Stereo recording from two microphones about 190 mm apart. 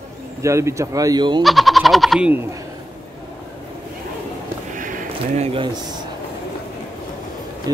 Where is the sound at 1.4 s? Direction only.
Centre (ahead or behind).